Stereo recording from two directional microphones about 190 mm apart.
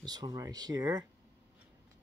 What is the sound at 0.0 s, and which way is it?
Speech, 20° right (ahead or behind).